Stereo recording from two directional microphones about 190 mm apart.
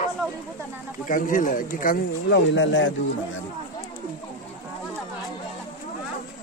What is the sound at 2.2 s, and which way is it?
Speech, 70° left (ahead or behind).